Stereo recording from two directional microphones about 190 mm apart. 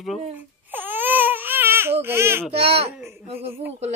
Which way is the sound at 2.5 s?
30° right (ahead or behind).